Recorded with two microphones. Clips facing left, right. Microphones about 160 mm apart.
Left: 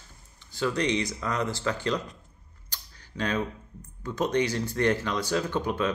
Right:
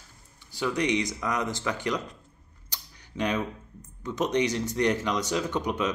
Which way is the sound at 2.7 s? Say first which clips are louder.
Right 2 dB; 15° right (ahead or behind).